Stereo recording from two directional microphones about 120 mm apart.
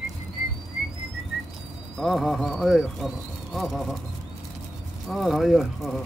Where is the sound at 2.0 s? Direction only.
Centre (ahead or behind).